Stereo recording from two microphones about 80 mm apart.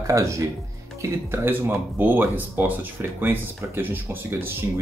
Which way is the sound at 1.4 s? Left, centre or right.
Right.